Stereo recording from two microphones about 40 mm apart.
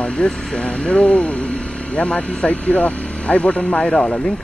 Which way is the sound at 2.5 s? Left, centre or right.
Left.